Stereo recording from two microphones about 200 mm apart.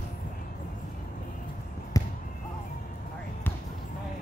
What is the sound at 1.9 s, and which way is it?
Basketball bounce, 20° left (ahead or behind).